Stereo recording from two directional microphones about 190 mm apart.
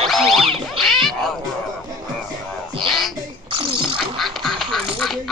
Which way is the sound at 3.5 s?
30° right (ahead or behind).